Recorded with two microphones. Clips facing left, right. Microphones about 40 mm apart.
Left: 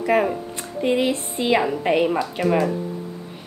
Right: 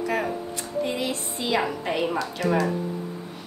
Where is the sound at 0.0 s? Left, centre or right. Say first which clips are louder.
Left 6 dB; left.